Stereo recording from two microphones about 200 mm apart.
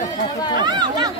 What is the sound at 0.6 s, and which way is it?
Chatter, 20° right (ahead or behind).